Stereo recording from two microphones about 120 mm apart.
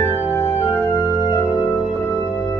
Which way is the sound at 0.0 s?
20° left (ahead or behind).